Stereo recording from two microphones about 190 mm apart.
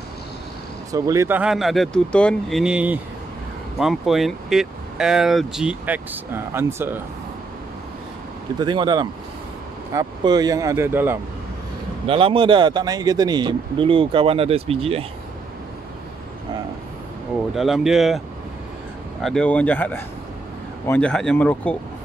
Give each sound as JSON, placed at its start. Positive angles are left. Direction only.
{"t": 0.9, "sound": "speech", "side_deg": -15}
{"t": 8.5, "sound": "a man's voice", "side_deg": -25}
{"t": 12.1, "sound": "a man's voice", "side_deg": -30}
{"t": 17.6, "sound": "speech", "side_deg": 0}
{"t": 19.2, "sound": "speech", "side_deg": 5}